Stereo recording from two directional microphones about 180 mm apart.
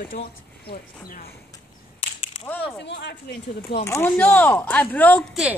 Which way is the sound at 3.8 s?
15° left (ahead or behind).